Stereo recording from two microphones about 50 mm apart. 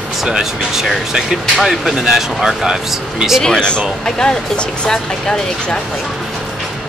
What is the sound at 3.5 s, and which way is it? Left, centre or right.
Speech, centre.